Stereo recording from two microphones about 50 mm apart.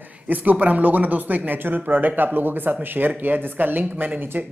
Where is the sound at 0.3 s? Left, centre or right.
Right.